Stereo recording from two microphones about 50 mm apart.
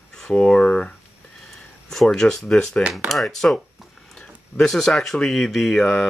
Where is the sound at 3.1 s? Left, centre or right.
Centre.